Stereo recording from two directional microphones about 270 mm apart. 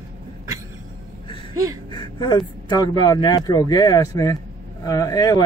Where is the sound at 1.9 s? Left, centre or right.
Centre.